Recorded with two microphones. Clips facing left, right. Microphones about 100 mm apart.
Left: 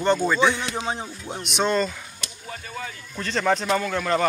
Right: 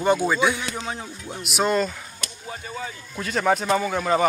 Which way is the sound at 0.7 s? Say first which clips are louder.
Left 3 dB; 20° left (ahead or behind).